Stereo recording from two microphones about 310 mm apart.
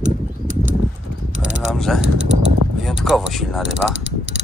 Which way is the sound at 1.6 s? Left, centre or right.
Centre.